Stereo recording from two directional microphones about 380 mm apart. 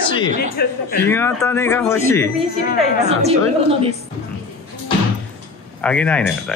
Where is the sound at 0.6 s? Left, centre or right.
Left.